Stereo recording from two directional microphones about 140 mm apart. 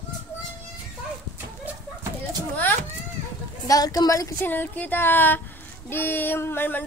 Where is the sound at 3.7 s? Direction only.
25° left (ahead or behind).